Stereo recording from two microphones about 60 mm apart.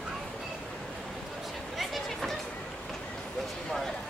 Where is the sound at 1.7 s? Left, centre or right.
Centre.